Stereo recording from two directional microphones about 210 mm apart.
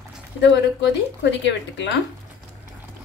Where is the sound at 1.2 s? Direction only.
55° left (ahead or behind).